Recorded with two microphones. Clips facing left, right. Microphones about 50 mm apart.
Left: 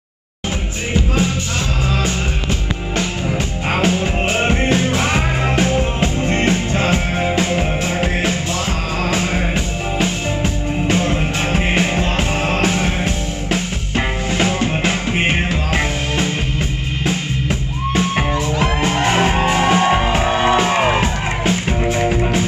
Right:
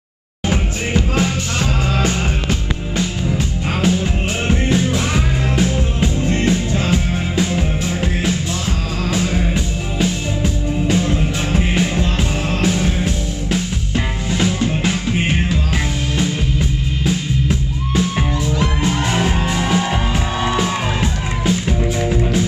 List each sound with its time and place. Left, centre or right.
3.3 s music: left